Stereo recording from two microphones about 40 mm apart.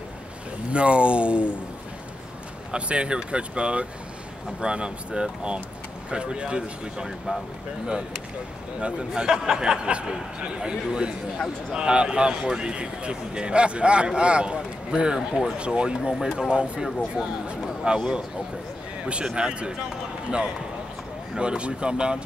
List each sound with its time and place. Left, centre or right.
0.7 s a man's voice: right
2.7 s a man's voice: right
9.1 s a man's voice: centre
19.3 s a man's voice: right
21.4 s a man's voice: right